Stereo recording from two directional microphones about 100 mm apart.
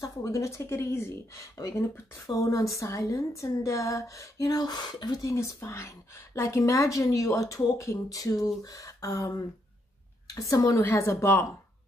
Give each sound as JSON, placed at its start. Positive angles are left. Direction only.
{"t": 0.0, "sound": "a woman's voice", "side_deg": 35}
{"t": 5.2, "sound": "a woman's voice", "side_deg": 30}